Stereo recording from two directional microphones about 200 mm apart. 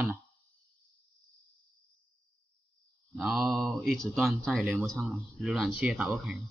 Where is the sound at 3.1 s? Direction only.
Centre (ahead or behind).